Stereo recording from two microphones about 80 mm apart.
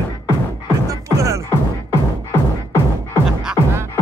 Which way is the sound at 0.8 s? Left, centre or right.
Right.